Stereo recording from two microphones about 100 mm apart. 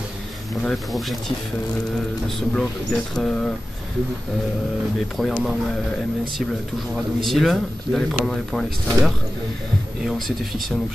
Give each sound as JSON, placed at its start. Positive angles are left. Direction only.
{"t": 0.6, "sound": "speech", "side_deg": 5}
{"t": 2.5, "sound": "speech", "side_deg": 5}
{"t": 5.3, "sound": "speech", "side_deg": -5}
{"t": 7.2, "sound": "speech", "side_deg": 0}